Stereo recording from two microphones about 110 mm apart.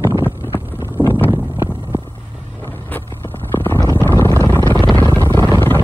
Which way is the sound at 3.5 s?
20° left (ahead or behind).